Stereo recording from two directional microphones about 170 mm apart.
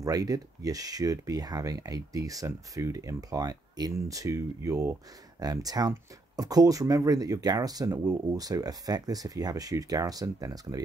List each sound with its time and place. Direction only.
0.0 s speech: 20° right (ahead or behind)